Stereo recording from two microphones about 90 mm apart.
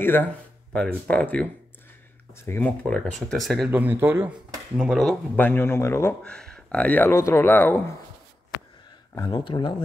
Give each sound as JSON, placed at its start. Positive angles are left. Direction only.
{"t": 0.0, "sound": "speech", "side_deg": 25}
{"t": 2.4, "sound": "a man's voice", "side_deg": 25}
{"t": 2.8, "sound": "speech", "side_deg": 10}
{"t": 3.7, "sound": "speech", "side_deg": -25}
{"t": 4.7, "sound": "speech", "side_deg": -10}
{"t": 5.3, "sound": "a man's voice", "side_deg": 20}
{"t": 6.2, "sound": "speech", "side_deg": 10}
{"t": 7.1, "sound": "speech", "side_deg": 35}
{"t": 7.4, "sound": "a man's voice", "side_deg": 20}
{"t": 9.3, "sound": "speech", "side_deg": 60}